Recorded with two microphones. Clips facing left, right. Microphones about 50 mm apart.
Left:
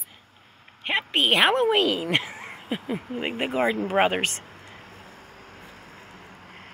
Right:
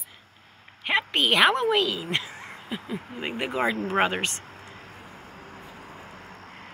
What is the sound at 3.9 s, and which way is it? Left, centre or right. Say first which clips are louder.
Speech: left 2 dB; left.